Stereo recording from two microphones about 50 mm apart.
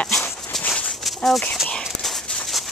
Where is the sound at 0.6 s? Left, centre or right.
Centre.